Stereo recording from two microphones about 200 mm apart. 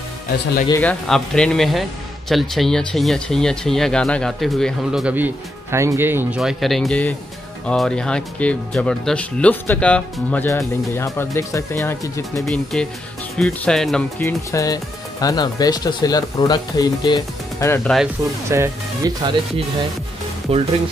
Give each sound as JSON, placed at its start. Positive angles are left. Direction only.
{"t": 0.7, "sound": "a man's voice", "side_deg": 10}
{"t": 12.4, "sound": "a man's voice", "side_deg": 0}
{"t": 14.2, "sound": "speech", "side_deg": 15}
{"t": 18.5, "sound": "speech", "side_deg": -15}